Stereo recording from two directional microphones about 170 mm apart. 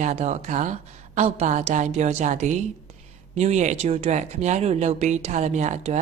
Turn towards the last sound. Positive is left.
turn(degrees=-45)  # may be behind; listen again after turning